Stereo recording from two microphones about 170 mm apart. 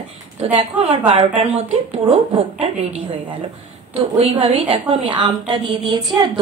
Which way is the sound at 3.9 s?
35° right (ahead or behind).